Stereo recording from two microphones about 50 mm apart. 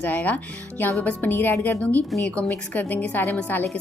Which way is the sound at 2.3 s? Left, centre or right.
Left.